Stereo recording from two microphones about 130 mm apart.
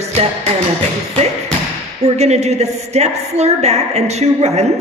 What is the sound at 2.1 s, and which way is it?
A woman's voice, 55° right (ahead or behind).